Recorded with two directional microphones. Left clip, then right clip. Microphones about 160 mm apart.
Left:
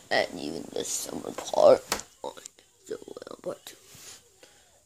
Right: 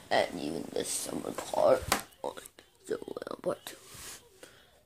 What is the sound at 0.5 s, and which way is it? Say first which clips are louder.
Speech: left 2 dB; 15° left (ahead or behind).